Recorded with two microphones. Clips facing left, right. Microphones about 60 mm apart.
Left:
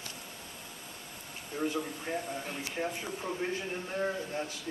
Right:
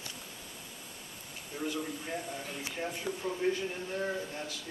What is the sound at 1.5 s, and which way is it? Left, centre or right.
A man's voice, left.